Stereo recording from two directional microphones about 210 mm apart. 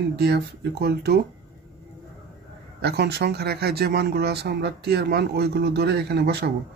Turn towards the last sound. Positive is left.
turn(degrees=-50)  # may be behind; listen again after turning